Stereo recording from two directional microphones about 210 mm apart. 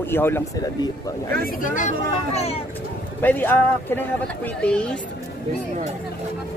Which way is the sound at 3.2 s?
10° left (ahead or behind).